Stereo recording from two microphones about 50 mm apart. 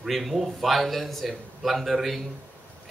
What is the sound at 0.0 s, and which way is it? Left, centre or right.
Speech, centre.